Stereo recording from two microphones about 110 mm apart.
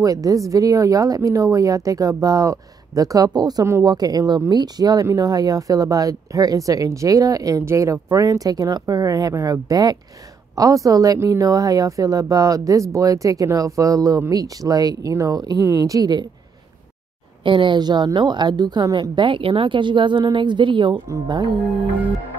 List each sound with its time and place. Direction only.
0.0 s speech: 35° right (ahead or behind)
17.4 s a woman's voice: 50° right (ahead or behind)